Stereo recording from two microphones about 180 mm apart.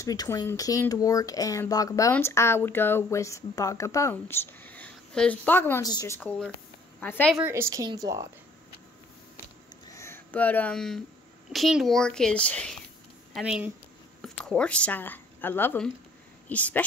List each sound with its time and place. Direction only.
0.0 s speech: 20° left (ahead or behind)
7.3 s a woman's voice: 10° right (ahead or behind)
9.9 s a woman's voice: 15° left (ahead or behind)
13.3 s speech: 5° right (ahead or behind)